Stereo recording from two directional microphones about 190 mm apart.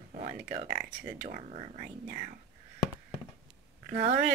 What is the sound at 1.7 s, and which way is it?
Speech, 50° right (ahead or behind).